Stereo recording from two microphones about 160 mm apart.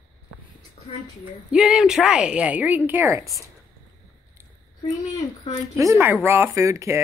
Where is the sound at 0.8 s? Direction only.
35° left (ahead or behind).